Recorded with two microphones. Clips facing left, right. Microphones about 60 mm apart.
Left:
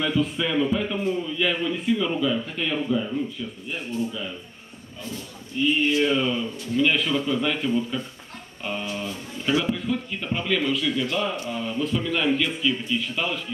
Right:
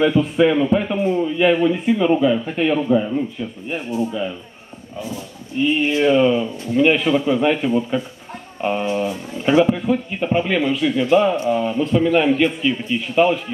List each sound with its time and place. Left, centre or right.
0.4 s a man's voice: right
5.5 s speech: right